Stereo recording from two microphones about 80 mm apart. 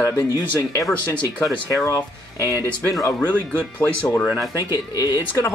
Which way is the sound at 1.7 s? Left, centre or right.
Left.